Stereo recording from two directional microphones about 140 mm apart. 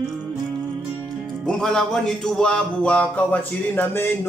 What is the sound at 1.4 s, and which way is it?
Music, 5° left (ahead or behind).